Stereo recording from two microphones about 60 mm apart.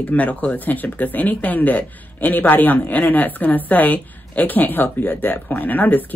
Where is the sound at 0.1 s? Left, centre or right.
Left.